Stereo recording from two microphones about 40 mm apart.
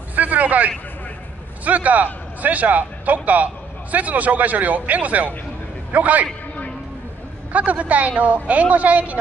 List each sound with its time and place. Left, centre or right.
0.1 s a sound: right
1.6 s a man's voice: right
7.5 s speech: right